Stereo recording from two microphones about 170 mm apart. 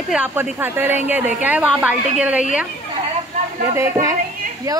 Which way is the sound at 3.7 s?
15° right (ahead or behind).